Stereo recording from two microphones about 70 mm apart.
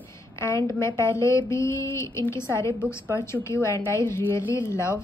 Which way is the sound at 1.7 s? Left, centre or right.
Left.